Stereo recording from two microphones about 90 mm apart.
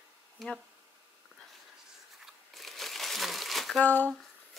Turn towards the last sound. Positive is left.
turn(degrees=20)  # may be behind; listen again after turning